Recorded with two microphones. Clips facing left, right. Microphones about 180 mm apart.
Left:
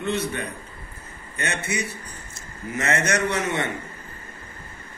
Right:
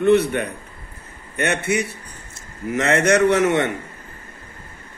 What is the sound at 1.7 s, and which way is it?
A man's voice, 65° right (ahead or behind).